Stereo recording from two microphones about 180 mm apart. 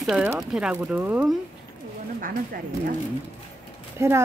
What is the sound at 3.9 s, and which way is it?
Speech, 15° right (ahead or behind).